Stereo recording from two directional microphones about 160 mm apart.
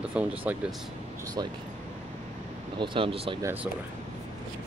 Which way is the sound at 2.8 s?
35° right (ahead or behind).